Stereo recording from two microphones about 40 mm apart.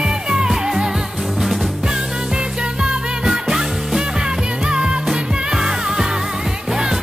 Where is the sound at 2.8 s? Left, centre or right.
Centre.